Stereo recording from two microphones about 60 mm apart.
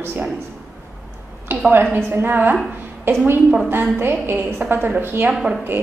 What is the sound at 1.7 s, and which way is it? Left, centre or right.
Speech, right.